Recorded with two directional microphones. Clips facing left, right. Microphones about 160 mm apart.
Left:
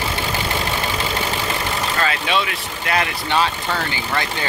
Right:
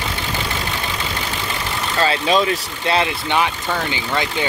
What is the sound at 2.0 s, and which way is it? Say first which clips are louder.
Speech: right 6 dB; 35° right (ahead or behind).